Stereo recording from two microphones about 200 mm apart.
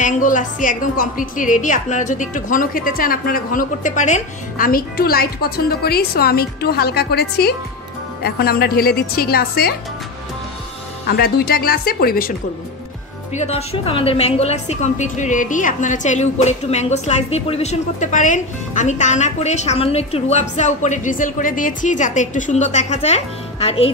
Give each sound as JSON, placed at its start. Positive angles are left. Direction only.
{"t": 0.0, "sound": "a woman's voice", "side_deg": 40}
{"t": 11.1, "sound": "a woman's voice", "side_deg": 50}
{"t": 13.3, "sound": "a woman's voice", "side_deg": 35}